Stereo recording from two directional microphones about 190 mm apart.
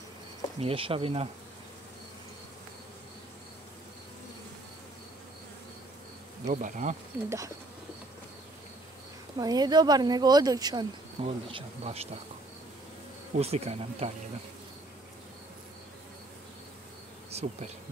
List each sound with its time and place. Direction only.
0.6 s speech: 30° right (ahead or behind)
6.4 s speech: 40° right (ahead or behind)
7.2 s bird: 15° right (ahead or behind)
9.4 s speech: 20° right (ahead or behind)
13.4 s speech: 35° right (ahead or behind)
17.3 s bee: 35° right (ahead or behind)